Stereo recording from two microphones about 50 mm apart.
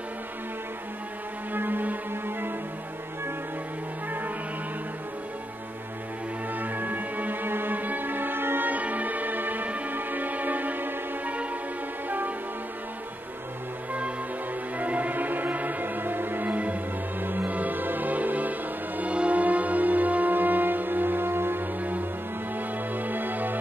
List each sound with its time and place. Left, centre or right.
1.5 s music: right
6.6 s music: right
14.8 s music: right